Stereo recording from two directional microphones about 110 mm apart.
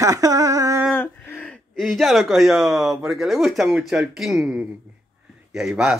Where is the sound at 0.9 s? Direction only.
20° left (ahead or behind).